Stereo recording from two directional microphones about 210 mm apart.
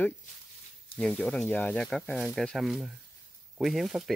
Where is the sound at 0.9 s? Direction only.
5° left (ahead or behind).